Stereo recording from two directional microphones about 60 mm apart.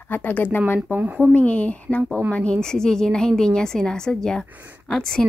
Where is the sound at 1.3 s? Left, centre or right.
Left.